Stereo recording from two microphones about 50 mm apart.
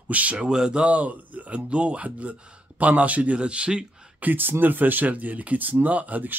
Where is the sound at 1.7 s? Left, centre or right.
Right.